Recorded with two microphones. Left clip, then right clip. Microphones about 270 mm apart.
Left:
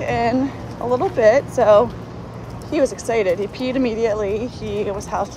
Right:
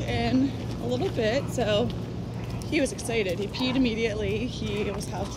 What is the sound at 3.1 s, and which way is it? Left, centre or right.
Speech, centre.